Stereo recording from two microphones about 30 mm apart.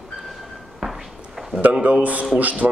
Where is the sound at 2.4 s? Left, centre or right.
Right.